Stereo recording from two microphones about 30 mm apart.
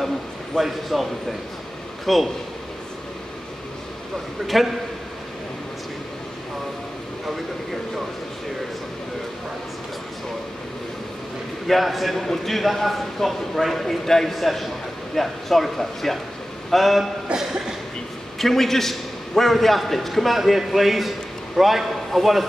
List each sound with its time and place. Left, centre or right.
0.6 s a man's voice: centre
2.1 s a man's voice: centre
4.5 s a man's voice: centre
11.6 s a man's voice: centre
17.3 s a sound: right
18.4 s a man's voice: centre